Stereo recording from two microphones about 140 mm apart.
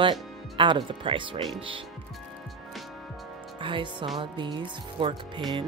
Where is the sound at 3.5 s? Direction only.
35° right (ahead or behind).